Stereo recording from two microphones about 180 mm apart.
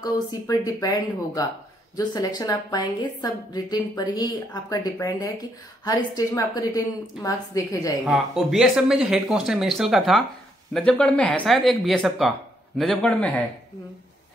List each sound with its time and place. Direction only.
0.0 s speech: 20° left (ahead or behind)
8.0 s speech: centre (ahead or behind)